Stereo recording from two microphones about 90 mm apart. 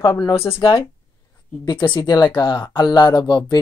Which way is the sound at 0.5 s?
70° left (ahead or behind).